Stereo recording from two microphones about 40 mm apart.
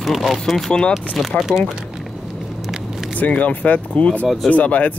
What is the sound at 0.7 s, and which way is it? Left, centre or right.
Speech, left.